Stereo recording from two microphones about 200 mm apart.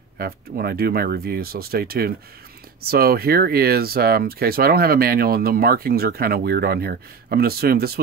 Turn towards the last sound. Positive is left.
turn(degrees=-50)  # may be behind; listen again after turning